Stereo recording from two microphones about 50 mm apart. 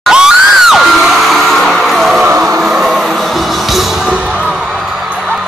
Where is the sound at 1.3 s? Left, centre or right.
Centre.